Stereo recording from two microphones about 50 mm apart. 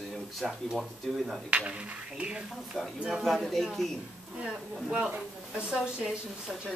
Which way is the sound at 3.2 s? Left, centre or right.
Centre.